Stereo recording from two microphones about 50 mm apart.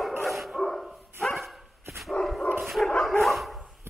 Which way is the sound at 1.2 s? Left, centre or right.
Centre.